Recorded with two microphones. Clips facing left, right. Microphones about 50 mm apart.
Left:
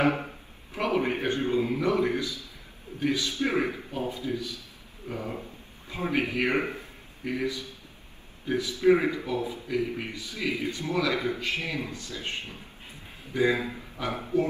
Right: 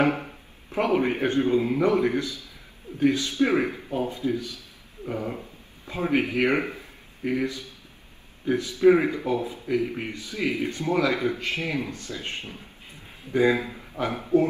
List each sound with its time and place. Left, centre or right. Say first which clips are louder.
0.7 s speech: right 4 dB; right
6.6 s a man's voice: even; left
7.2 s speech: right 3 dB; right
14.0 s speech: right 4 dB; right